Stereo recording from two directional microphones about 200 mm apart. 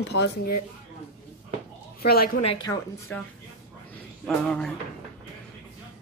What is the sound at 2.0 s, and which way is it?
Speech, 50° left (ahead or behind).